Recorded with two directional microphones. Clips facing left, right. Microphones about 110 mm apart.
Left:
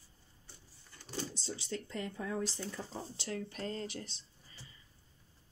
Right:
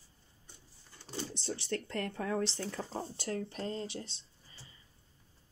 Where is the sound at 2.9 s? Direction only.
45° right (ahead or behind).